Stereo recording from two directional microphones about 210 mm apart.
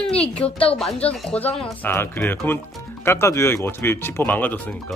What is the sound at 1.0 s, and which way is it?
Speech, 5° left (ahead or behind).